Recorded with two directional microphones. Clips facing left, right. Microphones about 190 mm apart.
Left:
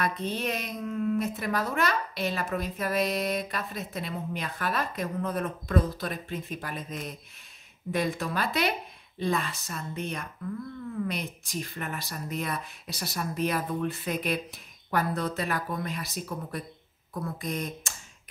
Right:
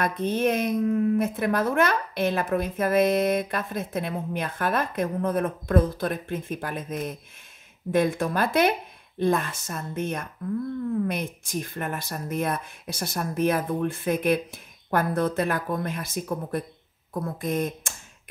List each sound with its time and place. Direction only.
0.0 s speech: 50° right (ahead or behind)